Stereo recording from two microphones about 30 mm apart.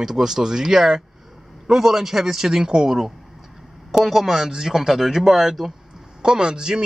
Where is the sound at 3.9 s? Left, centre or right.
Centre.